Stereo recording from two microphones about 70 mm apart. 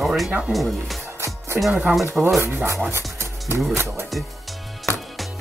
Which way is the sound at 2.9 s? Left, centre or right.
Right.